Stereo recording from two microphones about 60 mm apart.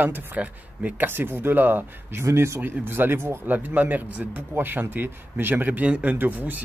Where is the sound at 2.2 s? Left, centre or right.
Right.